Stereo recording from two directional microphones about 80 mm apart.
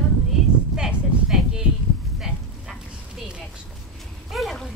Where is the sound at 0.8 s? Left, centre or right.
Centre.